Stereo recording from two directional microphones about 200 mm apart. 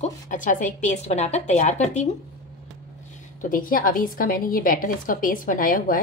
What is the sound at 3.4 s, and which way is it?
A woman's voice, 45° left (ahead or behind).